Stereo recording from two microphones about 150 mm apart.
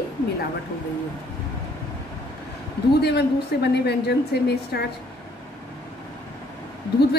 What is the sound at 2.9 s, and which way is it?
A woman's voice, 90° left.